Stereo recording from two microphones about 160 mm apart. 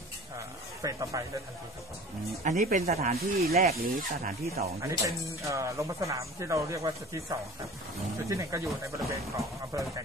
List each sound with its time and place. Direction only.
0.8 s speech: 20° right (ahead or behind)
2.4 s speech: 55° right (ahead or behind)
2.8 s speech: 40° right (ahead or behind)
3.1 s speech: 70° right (ahead or behind)
3.7 s speech: 55° right (ahead or behind)
4.8 s speech: 20° right (ahead or behind)